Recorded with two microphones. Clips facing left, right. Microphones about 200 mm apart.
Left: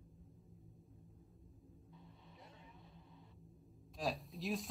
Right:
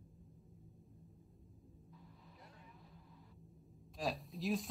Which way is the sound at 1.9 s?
25° left (ahead or behind).